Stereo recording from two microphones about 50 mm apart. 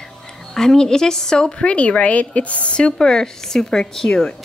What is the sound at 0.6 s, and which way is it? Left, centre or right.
A woman's voice, centre.